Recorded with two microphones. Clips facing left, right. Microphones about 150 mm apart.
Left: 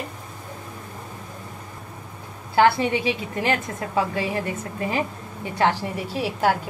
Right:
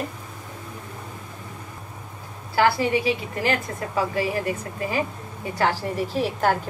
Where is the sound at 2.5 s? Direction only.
25° left (ahead or behind).